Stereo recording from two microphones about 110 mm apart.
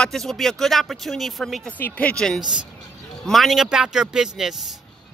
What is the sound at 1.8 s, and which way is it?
Speech, 15° left (ahead or behind).